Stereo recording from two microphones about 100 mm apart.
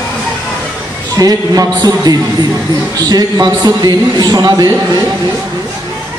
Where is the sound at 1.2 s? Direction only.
40° right (ahead or behind).